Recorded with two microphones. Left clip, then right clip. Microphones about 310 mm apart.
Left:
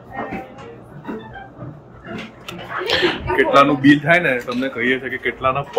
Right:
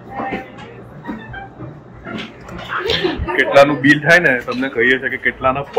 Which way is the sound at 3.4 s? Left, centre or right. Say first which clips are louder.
Right 3 dB; centre.